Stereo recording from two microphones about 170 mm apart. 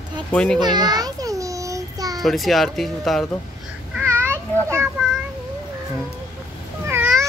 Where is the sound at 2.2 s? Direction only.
Centre (ahead or behind).